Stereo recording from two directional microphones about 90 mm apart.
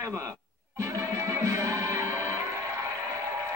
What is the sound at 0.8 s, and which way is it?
Music, 35° right (ahead or behind).